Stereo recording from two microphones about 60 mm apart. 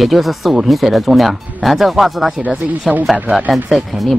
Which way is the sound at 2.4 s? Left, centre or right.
Right.